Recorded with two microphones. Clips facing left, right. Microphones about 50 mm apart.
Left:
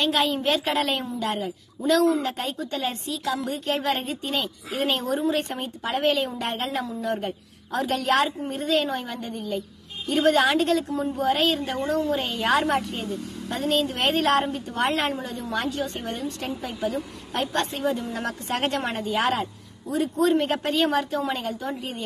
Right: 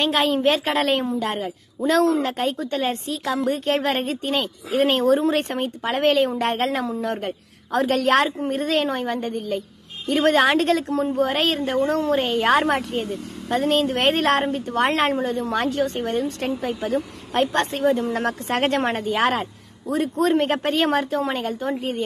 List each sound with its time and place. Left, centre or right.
0.0 s a woman's voice: right
2.2 s a woman's voice: right
5.2 s a woman's voice: right